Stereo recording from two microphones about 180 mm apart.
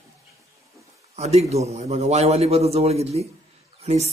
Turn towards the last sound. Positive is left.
turn(degrees=-35)  # may be behind; listen again after turning